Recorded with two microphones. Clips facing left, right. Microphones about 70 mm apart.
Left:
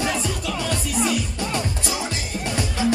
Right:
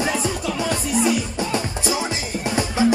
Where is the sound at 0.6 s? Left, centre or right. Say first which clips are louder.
Right 3 dB; centre.